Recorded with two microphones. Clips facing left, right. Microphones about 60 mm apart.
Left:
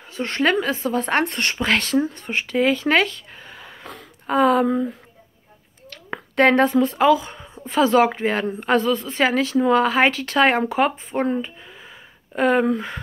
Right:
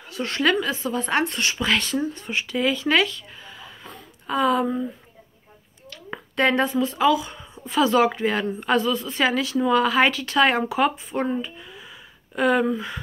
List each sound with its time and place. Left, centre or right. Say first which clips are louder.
0.0 s speech: left 2 dB; left
4.3 s speech: left 4 dB; left
5.9 s a woman's voice: left 3 dB; left
11.2 s a sound: left 3 dB; left
12.7 s a woman's voice: left 2 dB; left